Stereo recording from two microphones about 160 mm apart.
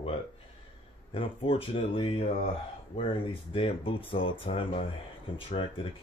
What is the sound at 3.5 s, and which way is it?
Speech, 35° left (ahead or behind).